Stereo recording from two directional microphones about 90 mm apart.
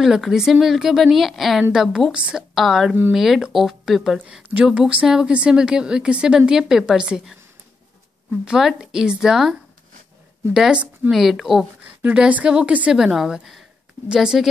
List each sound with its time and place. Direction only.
0.0 s a woman's voice: 5° right (ahead or behind)
4.2 s speech: 15° right (ahead or behind)
8.5 s a woman's voice: 5° right (ahead or behind)
12.0 s speech: 15° right (ahead or behind)